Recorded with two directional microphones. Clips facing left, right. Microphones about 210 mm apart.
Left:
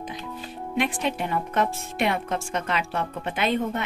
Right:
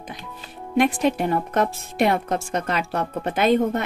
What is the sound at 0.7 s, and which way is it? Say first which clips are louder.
Speech: right 7 dB; 45° right (ahead or behind).